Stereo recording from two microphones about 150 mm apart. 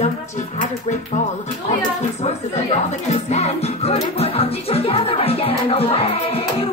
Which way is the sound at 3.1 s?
45° left (ahead or behind).